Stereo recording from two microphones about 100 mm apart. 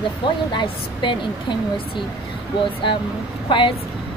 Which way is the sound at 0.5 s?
50° left (ahead or behind).